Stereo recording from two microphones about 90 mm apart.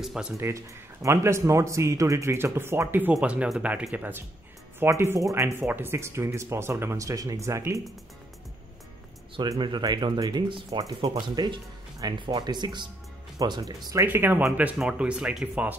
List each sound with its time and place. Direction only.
0.0 s speech: 5° right (ahead or behind)
0.4 s speech: 35° right (ahead or behind)
9.6 s speech: 60° right (ahead or behind)
13.4 s speech: 45° right (ahead or behind)
14.0 s speech: 25° right (ahead or behind)
14.8 s speech: 10° right (ahead or behind)